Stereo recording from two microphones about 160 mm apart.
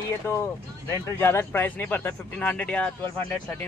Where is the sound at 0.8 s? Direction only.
15° left (ahead or behind).